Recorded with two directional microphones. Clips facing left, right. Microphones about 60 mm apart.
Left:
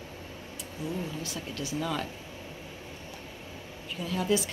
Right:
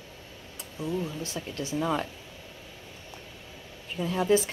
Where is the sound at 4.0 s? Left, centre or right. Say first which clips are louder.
Right 4 dB; right.